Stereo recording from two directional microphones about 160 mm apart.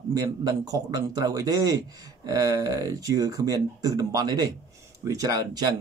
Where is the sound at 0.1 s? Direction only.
25° right (ahead or behind).